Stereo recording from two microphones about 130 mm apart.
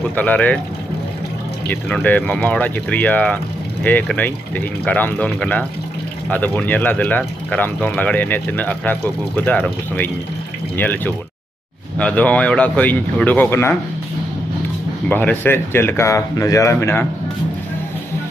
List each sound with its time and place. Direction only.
0.1 s speech: 10° left (ahead or behind)
1.7 s speech: 10° left (ahead or behind)
15.0 s speech: 15° left (ahead or behind)